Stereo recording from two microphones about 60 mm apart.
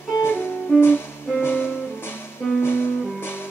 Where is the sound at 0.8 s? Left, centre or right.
Left.